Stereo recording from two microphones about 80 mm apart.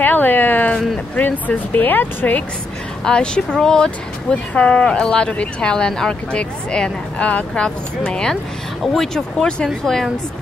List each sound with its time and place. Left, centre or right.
0.0 s speech: left
3.1 s speech: centre